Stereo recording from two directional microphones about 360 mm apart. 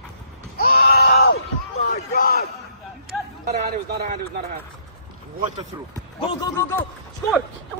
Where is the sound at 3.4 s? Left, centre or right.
Right.